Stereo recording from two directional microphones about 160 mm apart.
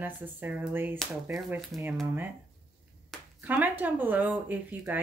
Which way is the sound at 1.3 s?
Centre (ahead or behind).